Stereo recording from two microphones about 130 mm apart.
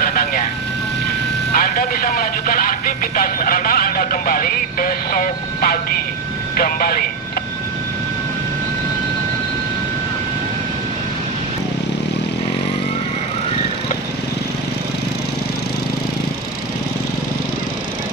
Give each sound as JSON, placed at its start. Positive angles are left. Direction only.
{"t": 0.0, "sound": "vehicle", "side_deg": 90}
{"t": 1.5, "sound": "speech", "side_deg": 90}